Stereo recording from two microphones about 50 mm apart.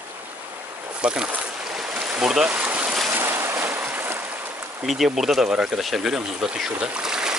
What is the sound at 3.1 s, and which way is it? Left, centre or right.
Boat, right.